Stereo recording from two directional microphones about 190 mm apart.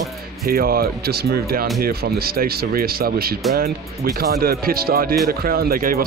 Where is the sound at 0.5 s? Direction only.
50° right (ahead or behind).